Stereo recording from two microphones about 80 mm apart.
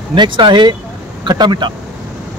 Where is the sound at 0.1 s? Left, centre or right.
Right.